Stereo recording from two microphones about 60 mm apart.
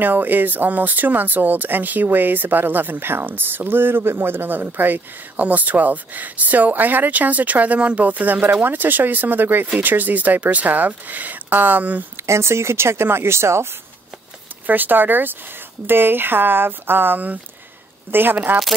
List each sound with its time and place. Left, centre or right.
0.0 s speech: right
12.2 s speech: right
14.7 s speech: right